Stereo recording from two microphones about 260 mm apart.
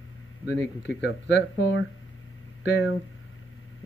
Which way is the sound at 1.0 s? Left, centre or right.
Left.